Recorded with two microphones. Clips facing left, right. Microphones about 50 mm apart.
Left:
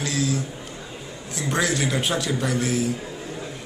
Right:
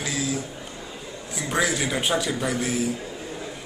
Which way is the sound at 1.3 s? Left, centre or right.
Centre.